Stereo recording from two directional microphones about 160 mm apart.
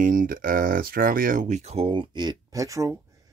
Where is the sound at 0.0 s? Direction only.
60° right (ahead or behind).